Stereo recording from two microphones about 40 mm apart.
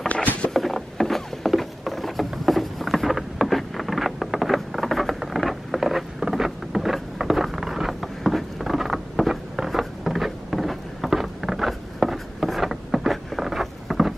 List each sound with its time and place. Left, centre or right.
0.1 s boat: left
0.5 s boat: centre
1.6 s patter: centre
2.4 s vehicle: centre